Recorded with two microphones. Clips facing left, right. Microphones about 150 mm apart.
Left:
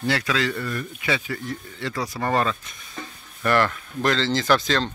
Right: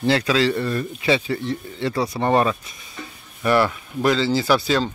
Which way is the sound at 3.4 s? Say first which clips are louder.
Right 3 dB; 10° right (ahead or behind).